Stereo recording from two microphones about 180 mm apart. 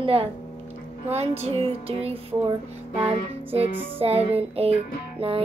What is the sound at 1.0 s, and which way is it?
Music, 35° right (ahead or behind).